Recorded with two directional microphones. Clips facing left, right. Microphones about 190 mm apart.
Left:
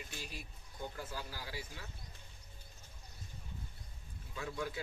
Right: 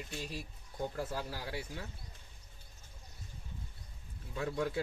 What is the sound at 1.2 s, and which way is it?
Speech, 65° right (ahead or behind).